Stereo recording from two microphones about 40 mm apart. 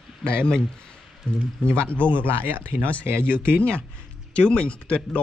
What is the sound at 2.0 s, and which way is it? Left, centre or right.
Speech, right.